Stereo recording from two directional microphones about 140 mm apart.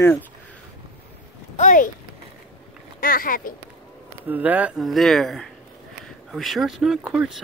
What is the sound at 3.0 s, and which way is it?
Speech, 90° left.